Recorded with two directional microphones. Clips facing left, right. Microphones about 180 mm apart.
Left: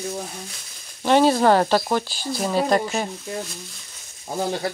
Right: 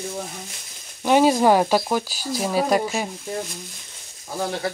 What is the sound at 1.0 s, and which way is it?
Speech, 10° right (ahead or behind).